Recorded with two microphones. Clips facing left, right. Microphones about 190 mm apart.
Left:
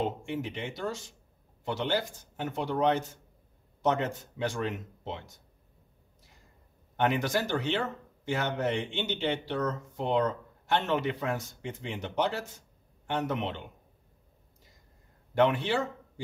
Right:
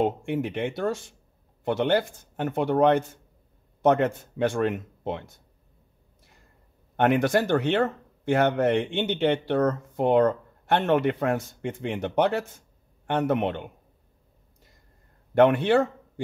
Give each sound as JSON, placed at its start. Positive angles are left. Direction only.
{"t": 0.0, "sound": "speech", "side_deg": -55}
{"t": 7.0, "sound": "speech", "side_deg": -55}
{"t": 15.3, "sound": "speech", "side_deg": -55}